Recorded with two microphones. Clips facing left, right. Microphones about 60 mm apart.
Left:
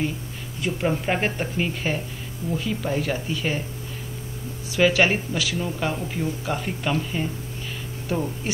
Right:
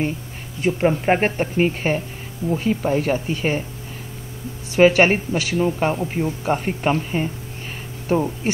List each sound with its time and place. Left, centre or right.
0.6 s speech: right
4.6 s speech: right